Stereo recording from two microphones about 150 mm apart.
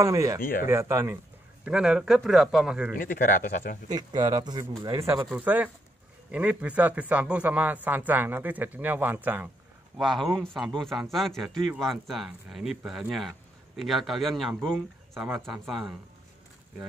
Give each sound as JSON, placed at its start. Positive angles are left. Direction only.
{"t": 0.0, "sound": "speech", "side_deg": -20}
{"t": 0.4, "sound": "speech", "side_deg": 70}
{"t": 0.7, "sound": "a man's voice", "side_deg": -15}
{"t": 1.6, "sound": "speech", "side_deg": -5}
{"t": 3.0, "sound": "speech", "side_deg": 65}
{"t": 3.9, "sound": "speech", "side_deg": -25}
{"t": 5.3, "sound": "a man's voice", "side_deg": -10}
{"t": 9.9, "sound": "speech", "side_deg": 0}